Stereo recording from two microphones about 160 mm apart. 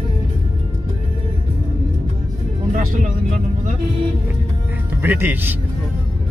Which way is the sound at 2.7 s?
50° right (ahead or behind).